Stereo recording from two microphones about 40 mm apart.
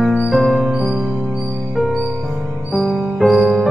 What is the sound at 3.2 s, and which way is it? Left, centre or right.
Music, centre.